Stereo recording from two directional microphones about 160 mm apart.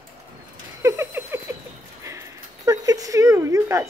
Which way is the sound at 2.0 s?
20° right (ahead or behind).